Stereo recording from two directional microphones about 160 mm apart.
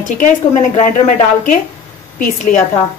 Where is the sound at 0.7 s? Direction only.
50° left (ahead or behind).